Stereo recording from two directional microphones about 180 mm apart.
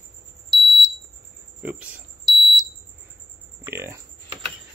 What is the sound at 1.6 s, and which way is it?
Speech, 10° right (ahead or behind).